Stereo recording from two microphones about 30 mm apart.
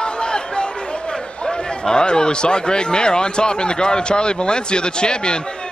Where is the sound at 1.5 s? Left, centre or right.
Left.